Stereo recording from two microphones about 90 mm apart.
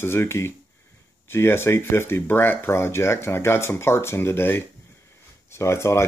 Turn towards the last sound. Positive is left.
turn(degrees=30)  # may be behind; listen again after turning